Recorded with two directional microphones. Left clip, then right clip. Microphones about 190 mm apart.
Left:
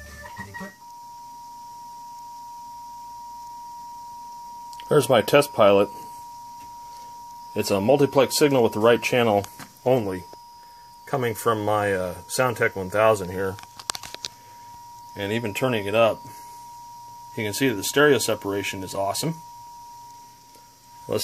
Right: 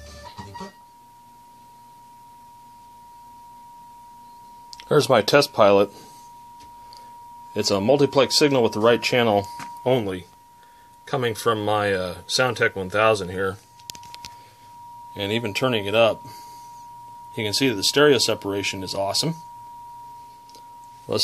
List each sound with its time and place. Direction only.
4.8 s speech: 5° left (ahead or behind)
7.5 s speech: centre (ahead or behind)
15.1 s speech: 5° right (ahead or behind)
17.4 s speech: centre (ahead or behind)
21.1 s speech: 5° right (ahead or behind)